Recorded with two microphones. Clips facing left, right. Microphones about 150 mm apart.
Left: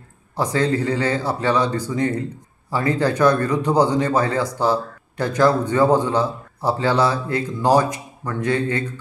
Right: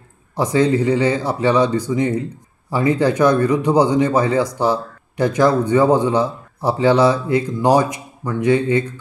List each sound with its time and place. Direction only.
0.4 s a man's voice: 15° right (ahead or behind)